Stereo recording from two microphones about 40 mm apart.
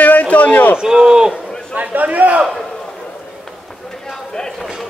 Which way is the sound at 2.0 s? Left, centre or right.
Right.